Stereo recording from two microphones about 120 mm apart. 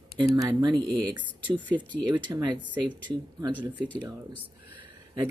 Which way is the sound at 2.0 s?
40° right (ahead or behind).